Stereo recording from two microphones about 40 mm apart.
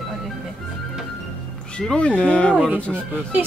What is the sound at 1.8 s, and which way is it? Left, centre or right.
Speech, left.